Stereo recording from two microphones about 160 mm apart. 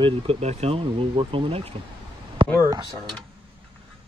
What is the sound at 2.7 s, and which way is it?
Speech, 25° right (ahead or behind).